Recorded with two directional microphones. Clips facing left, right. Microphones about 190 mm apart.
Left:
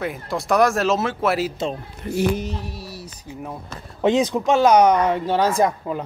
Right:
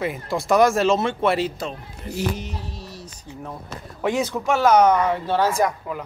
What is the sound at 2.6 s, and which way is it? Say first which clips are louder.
Speech: left 3 dB; 10° left (ahead or behind).